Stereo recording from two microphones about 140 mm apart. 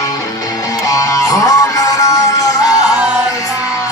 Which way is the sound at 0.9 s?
25° left (ahead or behind).